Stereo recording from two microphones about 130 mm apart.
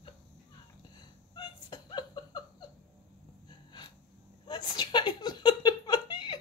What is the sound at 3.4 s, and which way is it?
Snort, 35° left (ahead or behind).